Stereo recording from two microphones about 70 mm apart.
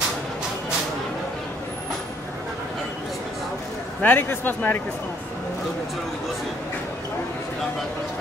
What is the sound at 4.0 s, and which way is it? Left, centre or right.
Speech, left.